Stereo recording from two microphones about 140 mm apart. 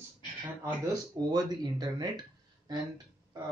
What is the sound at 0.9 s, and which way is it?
Speech, 30° right (ahead or behind).